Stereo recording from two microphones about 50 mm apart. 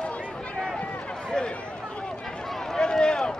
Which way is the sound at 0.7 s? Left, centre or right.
Left.